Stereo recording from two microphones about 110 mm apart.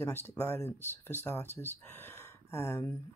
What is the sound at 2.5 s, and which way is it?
Speech, 20° left (ahead or behind).